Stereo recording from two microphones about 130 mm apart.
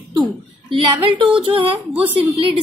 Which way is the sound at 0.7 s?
40° right (ahead or behind).